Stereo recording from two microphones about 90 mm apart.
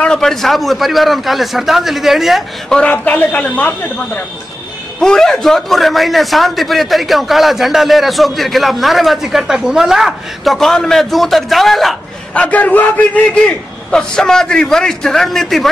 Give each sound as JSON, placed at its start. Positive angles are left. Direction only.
{"t": 0.0, "sound": "a man's voice", "side_deg": 5}
{"t": 2.8, "sound": "a man's voice", "side_deg": 20}
{"t": 5.0, "sound": "a man's voice", "side_deg": 5}
{"t": 12.4, "sound": "a man's voice", "side_deg": 15}